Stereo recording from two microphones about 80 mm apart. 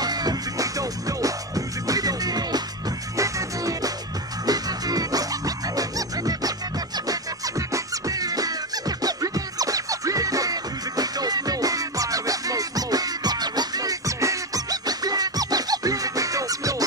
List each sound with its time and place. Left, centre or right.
0.0 s music: right
3.2 s music: right